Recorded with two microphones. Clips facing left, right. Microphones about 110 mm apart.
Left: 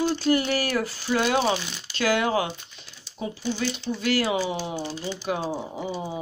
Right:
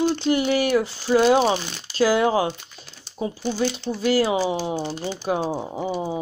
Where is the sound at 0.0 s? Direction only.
20° right (ahead or behind).